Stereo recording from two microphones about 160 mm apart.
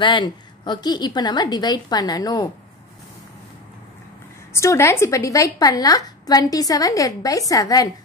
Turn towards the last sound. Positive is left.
turn(degrees=20)  # may be behind; listen again after turning